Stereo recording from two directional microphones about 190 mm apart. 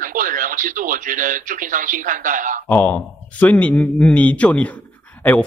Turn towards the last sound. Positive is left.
turn(degrees=10)  # may be behind; listen again after turning